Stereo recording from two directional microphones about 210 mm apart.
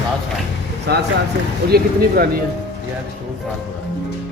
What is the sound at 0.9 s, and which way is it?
Speech, 50° right (ahead or behind).